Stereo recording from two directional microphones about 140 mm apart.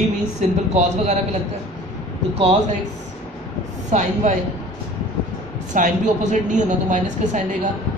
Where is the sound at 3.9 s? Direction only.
60° right (ahead or behind).